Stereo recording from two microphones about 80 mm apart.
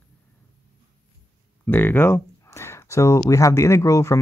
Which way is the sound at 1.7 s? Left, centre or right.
Left.